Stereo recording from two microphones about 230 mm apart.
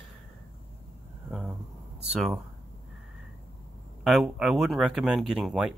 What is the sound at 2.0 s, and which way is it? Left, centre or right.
Speech, centre.